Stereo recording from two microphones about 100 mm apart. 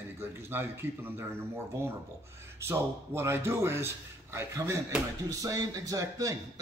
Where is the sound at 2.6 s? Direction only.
25° right (ahead or behind).